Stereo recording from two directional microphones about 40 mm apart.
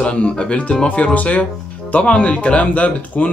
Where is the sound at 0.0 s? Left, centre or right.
Left.